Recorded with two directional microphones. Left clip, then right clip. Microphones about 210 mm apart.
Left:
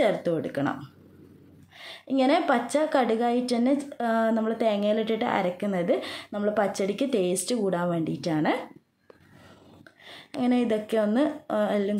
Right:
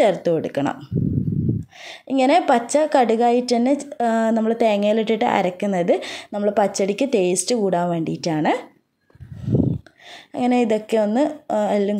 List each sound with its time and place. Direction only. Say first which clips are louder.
0.0 s a woman's voice: right 7 dB; 35° right (ahead or behind)
10.3 s speech: right 7 dB; 35° right (ahead or behind)